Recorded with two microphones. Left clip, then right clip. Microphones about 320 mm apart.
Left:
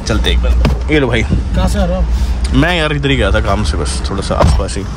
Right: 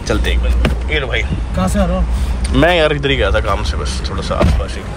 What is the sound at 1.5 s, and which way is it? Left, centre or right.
Speech, left.